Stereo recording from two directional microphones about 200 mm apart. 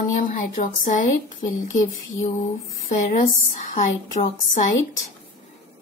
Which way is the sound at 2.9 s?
40° left (ahead or behind).